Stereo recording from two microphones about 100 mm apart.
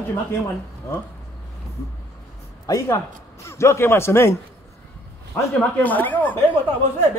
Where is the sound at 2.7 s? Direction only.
35° left (ahead or behind).